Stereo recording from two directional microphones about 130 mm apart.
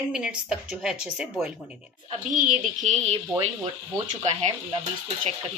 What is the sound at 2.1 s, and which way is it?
Speech, 80° right.